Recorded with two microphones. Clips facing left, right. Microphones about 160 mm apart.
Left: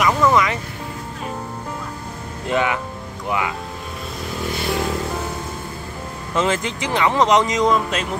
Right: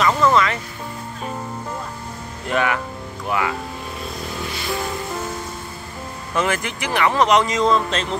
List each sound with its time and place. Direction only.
0.0 s music: 15° left (ahead or behind)
2.4 s speech: 20° left (ahead or behind)
6.3 s speech: 20° left (ahead or behind)